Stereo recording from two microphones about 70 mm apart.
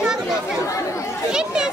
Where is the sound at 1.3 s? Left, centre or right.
Centre.